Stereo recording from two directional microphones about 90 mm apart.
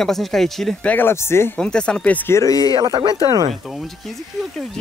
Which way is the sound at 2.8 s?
50° right (ahead or behind).